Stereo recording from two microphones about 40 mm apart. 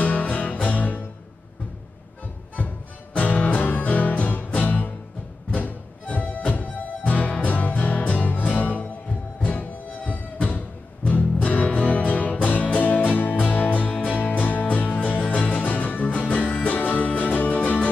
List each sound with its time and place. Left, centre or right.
0.0 s music: left
3.1 s music: left